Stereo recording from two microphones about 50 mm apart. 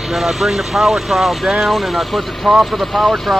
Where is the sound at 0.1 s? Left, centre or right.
Centre.